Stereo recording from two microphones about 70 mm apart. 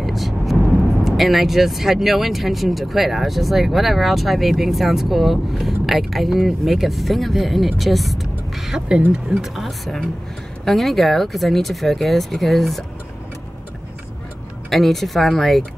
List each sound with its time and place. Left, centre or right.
0.0 s vehicle: centre
1.0 s speech: centre
8.8 s speech: centre
9.3 s speech: centre
14.7 s speech: centre